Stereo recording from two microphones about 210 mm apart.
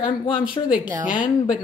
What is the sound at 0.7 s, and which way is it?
Speech, 40° left (ahead or behind).